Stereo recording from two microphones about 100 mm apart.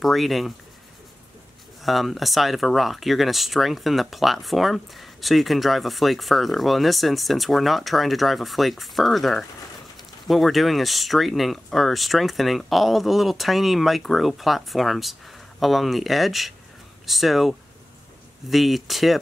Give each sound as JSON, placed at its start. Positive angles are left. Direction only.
{"t": 0.0, "sound": "speech", "side_deg": 0}
{"t": 1.8, "sound": "speech", "side_deg": 0}